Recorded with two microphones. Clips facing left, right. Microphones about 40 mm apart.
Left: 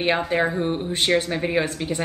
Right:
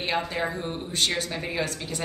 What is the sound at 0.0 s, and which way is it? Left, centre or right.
Speech, left.